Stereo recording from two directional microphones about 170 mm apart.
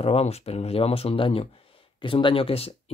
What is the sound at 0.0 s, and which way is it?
Speech, 40° left (ahead or behind).